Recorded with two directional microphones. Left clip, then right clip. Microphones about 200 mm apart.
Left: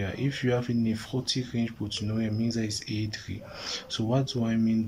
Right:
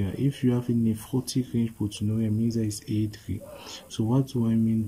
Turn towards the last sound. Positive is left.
turn(degrees=-20)  # may be behind; listen again after turning